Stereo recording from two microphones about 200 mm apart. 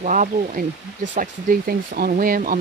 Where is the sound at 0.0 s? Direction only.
40° right (ahead or behind).